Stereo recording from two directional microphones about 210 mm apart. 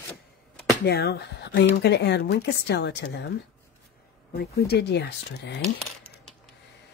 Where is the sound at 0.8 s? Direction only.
50° left (ahead or behind).